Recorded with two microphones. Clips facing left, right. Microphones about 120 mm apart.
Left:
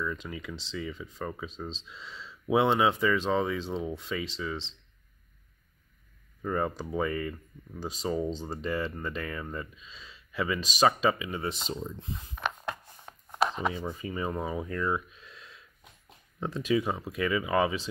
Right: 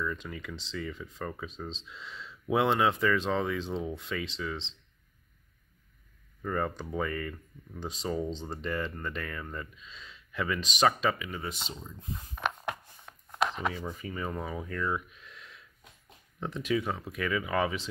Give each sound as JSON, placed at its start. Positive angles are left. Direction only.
{"t": 0.0, "sound": "speech", "side_deg": 5}
{"t": 6.4, "sound": "speech", "side_deg": 10}
{"t": 11.2, "sound": "speech", "side_deg": 25}
{"t": 13.1, "sound": "a sound", "side_deg": 30}
{"t": 13.5, "sound": "speech", "side_deg": 10}